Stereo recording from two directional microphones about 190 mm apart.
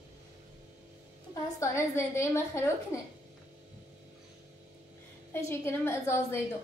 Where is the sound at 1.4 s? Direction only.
15° left (ahead or behind).